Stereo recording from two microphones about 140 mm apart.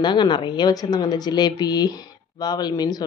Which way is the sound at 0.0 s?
30° left (ahead or behind).